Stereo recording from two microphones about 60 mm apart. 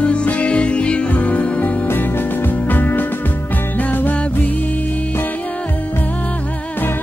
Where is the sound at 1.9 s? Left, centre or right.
Left.